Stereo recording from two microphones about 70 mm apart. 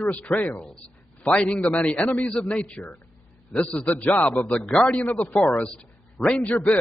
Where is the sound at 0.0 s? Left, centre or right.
Left.